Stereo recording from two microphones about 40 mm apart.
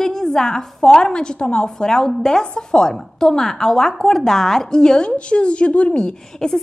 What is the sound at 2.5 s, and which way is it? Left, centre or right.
Speech, left.